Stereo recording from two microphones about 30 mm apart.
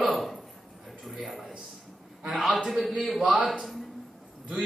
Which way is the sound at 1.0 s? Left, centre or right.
Centre.